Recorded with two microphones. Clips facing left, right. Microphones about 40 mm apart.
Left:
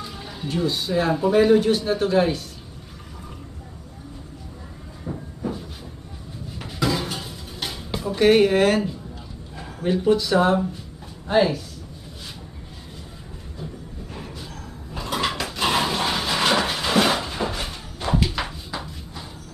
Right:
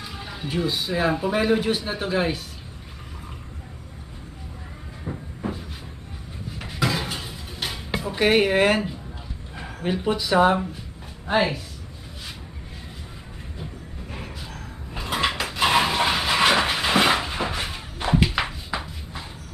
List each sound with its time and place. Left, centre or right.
0.0 s speech: centre
5.1 s train: centre
5.4 s cupboard open or close: right
6.6 s dishes: centre
9.6 s speech: centre
15.0 s pig: centre
18.2 s a sound: right